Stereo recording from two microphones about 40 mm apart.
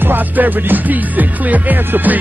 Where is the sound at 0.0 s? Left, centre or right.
Right.